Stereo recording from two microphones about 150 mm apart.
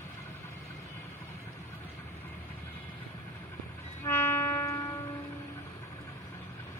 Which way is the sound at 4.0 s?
15° left (ahead or behind).